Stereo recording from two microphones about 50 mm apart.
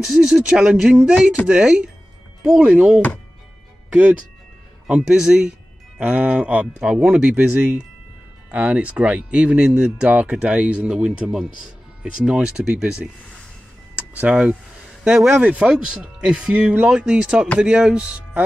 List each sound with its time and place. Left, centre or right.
0.0 s speech: centre
1.0 s speech: right
4.8 s speech: right
5.2 s speech: centre
5.9 s speech: right
7.2 s speech: right
9.8 s speech: right
10.2 s speech: right
13.9 s a sound: right
14.3 s speech: centre
15.4 s speech: right
15.7 s speech: centre